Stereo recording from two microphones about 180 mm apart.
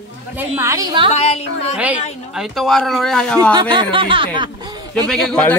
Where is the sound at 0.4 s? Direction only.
15° right (ahead or behind).